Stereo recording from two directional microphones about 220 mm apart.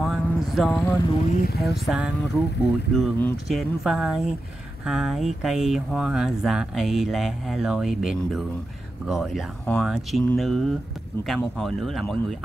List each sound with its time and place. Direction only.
0.0 s vehicle: centre (ahead or behind)
0.5 s speech: 5° left (ahead or behind)
1.3 s speech: 40° left (ahead or behind)
1.6 s speech: centre (ahead or behind)